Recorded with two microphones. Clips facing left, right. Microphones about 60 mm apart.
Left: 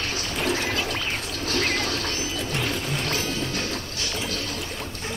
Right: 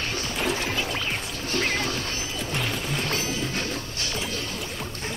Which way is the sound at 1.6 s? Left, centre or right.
Centre.